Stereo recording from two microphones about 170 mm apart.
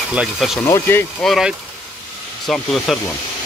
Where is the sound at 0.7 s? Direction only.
15° left (ahead or behind).